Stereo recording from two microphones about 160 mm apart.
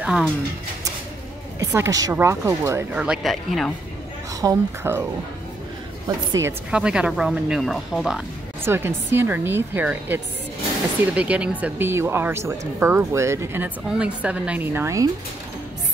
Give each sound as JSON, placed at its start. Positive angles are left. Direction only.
{"t": 0.0, "sound": "speech", "side_deg": -5}
{"t": 1.6, "sound": "speech", "side_deg": -20}
{"t": 2.9, "sound": "speech", "side_deg": -5}
{"t": 4.4, "sound": "speech", "side_deg": -15}
{"t": 6.4, "sound": "speech", "side_deg": -5}
{"t": 8.6, "sound": "speech", "side_deg": -15}